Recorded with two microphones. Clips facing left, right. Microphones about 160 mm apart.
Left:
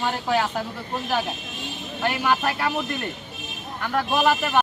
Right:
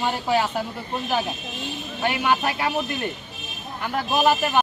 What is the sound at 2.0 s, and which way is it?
Speech, 5° right (ahead or behind).